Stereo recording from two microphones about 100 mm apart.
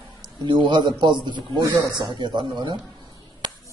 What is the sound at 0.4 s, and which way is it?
A man's voice, 50° right (ahead or behind).